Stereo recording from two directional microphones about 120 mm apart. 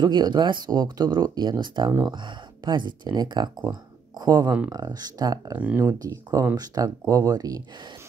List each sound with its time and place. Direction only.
0.0 s speech: 35° right (ahead or behind)